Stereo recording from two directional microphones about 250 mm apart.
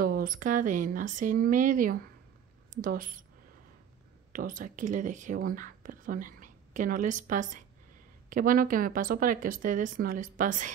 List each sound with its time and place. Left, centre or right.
0.0 s speech: right
4.3 s speech: right